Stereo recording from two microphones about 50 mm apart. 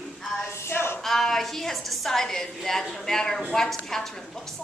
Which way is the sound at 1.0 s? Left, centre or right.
Centre.